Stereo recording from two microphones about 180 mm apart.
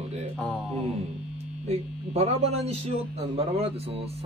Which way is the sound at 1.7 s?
35° right (ahead or behind).